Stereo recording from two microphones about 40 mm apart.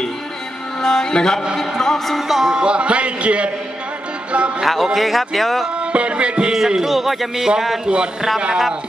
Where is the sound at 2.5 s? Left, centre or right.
Right.